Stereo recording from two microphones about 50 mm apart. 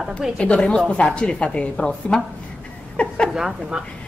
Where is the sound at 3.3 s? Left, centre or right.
Centre.